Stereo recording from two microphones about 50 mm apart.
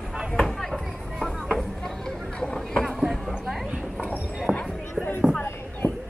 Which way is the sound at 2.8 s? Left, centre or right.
Centre.